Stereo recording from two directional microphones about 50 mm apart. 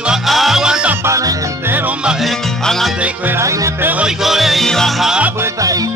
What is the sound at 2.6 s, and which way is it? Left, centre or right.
Music, centre.